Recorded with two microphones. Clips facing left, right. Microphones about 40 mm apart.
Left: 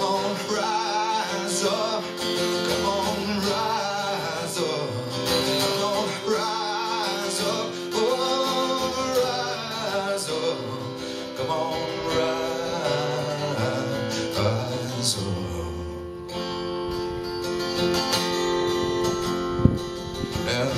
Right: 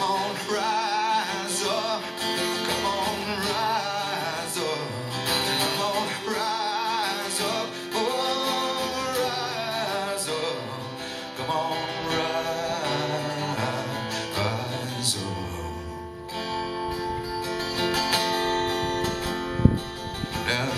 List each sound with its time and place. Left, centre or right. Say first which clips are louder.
0.0 s music: left 1 dB; right
17.5 s music: left 3 dB; centre